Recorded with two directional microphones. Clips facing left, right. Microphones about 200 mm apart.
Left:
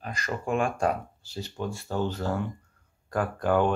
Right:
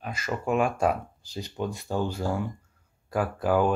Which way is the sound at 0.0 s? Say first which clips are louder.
Right 2 dB; 5° right (ahead or behind).